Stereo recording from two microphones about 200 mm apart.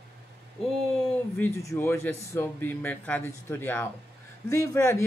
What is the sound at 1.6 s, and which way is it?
Speech, 15° left (ahead or behind).